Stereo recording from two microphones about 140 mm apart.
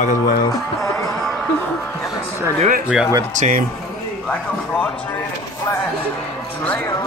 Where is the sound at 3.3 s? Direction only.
70° right (ahead or behind).